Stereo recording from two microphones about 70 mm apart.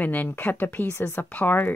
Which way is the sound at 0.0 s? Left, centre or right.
Left.